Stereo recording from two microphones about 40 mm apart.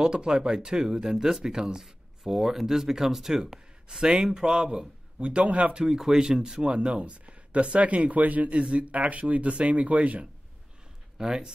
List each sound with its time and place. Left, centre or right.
0.0 s speech: centre
5.8 s speech: centre
6.7 s speech: right
11.1 s speech: centre